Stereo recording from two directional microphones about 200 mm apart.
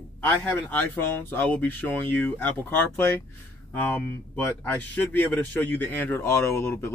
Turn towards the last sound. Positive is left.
turn(degrees=10)  # may be behind; listen again after turning